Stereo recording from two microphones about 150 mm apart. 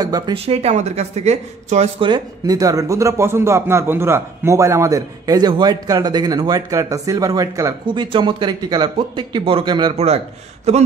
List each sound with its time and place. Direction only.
0.0 s a man's voice: 25° right (ahead or behind)
0.5 s speech: 45° right (ahead or behind)
2.0 s a man's voice: 30° right (ahead or behind)
7.8 s a man's voice: 30° right (ahead or behind)
9.9 s speech: 45° right (ahead or behind)